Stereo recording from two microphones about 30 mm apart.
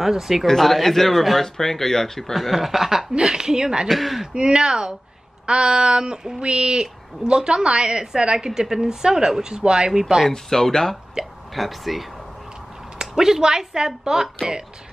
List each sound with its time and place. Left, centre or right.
0.0 s speech: centre
0.7 s speech: centre
1.4 s speech: centre
2.5 s speech: centre
3.1 s a woman's voice: right
3.9 s speech: centre
4.3 s a woman's voice: right
8.5 s a woman's voice: centre
10.3 s speech: centre
11.5 s speech: centre
13.1 s a woman's voice: centre